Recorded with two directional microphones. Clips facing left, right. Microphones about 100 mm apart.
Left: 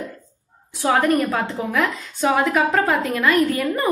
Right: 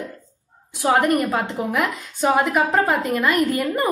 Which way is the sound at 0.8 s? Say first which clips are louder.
Even; 20° right (ahead or behind).